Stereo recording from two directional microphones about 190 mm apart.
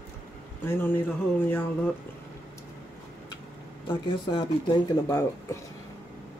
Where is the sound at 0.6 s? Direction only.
10° left (ahead or behind).